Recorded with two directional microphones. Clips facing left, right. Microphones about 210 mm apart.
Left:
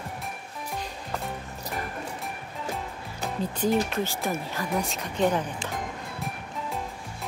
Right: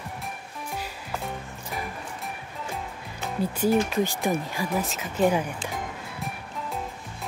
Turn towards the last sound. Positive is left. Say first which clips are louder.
# even
turn(degrees=0)  # may be behind; listen again after turning